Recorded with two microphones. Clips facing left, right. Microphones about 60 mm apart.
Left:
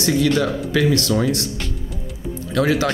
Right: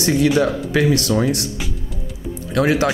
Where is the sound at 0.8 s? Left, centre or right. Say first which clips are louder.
Even; centre.